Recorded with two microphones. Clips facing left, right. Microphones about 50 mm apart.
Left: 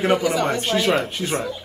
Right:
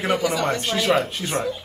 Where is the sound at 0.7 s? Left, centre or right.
Centre.